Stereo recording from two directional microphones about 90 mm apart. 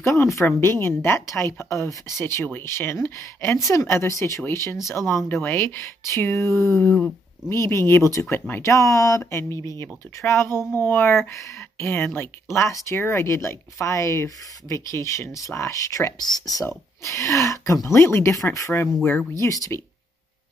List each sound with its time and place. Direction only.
0.0 s speech: 30° left (ahead or behind)
16.2 s speech: 50° left (ahead or behind)
16.6 s speech: 30° left (ahead or behind)